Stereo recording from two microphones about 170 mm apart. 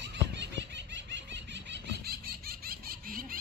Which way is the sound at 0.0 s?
90° right.